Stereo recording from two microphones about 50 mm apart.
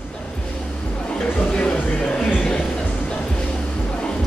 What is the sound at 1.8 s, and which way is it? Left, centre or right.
Music, left.